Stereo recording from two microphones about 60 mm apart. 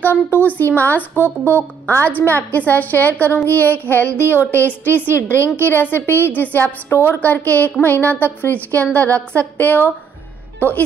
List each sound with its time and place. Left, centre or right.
0.0 s a woman's voice: left
6.9 s speech: left
7.2 s a woman's voice: left